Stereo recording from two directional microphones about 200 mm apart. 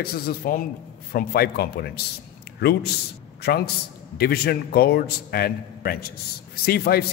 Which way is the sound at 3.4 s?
50° left (ahead or behind).